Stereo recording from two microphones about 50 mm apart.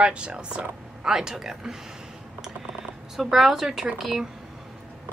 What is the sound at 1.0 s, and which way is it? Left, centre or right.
Speech, centre.